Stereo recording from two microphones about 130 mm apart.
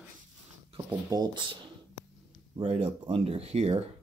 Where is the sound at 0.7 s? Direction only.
35° right (ahead or behind).